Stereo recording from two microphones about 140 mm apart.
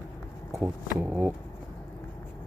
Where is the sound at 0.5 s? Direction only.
Centre (ahead or behind).